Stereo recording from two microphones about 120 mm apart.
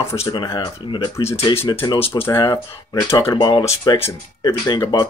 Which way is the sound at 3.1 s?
40° left (ahead or behind).